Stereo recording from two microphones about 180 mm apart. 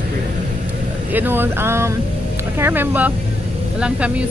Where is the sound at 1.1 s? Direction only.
10° right (ahead or behind).